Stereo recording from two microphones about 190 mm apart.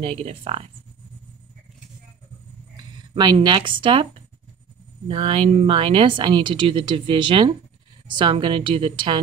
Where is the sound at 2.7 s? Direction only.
25° right (ahead or behind).